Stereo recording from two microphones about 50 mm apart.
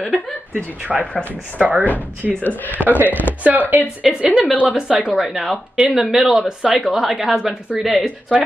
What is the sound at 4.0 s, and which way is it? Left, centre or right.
A woman's voice, centre.